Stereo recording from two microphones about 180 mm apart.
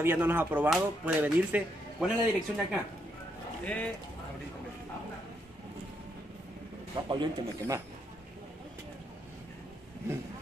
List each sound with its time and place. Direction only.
0.0 s speech: 10° right (ahead or behind)
3.6 s speech: 10° left (ahead or behind)
7.1 s speech: 20° right (ahead or behind)